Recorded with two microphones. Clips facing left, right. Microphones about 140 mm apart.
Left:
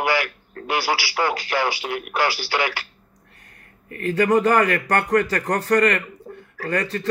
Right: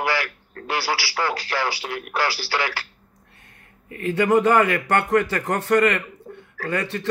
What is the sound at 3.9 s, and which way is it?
Speech, 15° right (ahead or behind).